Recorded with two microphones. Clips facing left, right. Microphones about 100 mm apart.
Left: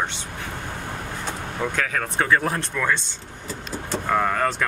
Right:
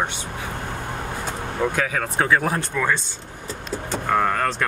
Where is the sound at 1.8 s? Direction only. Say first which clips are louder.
Right 2 dB; 5° right (ahead or behind).